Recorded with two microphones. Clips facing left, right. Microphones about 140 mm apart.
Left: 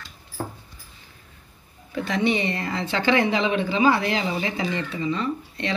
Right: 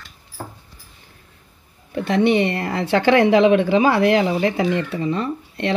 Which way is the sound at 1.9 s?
60° right (ahead or behind).